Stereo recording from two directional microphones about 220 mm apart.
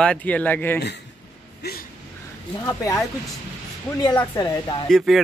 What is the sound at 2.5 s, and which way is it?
Speech, 15° left (ahead or behind).